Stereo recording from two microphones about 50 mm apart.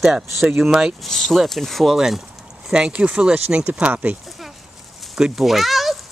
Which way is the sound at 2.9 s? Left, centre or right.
Right.